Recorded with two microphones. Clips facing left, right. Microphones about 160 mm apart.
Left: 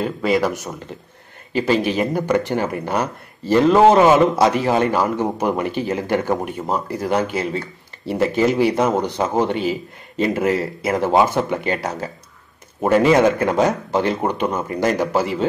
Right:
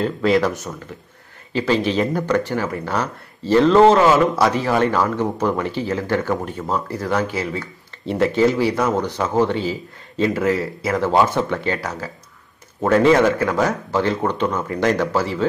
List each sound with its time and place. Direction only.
0.0 s speech: 5° left (ahead or behind); by 7.6 s 25° left (ahead or behind)
8.0 s speech: 10° left (ahead or behind)